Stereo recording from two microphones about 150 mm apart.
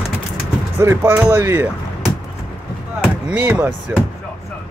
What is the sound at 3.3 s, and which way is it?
Speech, 10° right (ahead or behind).